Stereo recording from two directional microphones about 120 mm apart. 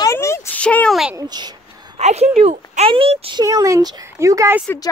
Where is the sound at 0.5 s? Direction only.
10° left (ahead or behind).